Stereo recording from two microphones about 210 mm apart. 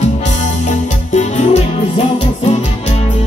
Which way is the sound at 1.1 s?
35° left (ahead or behind).